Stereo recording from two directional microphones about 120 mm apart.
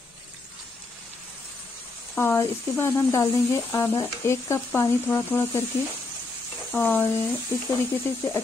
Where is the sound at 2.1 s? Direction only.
20° left (ahead or behind).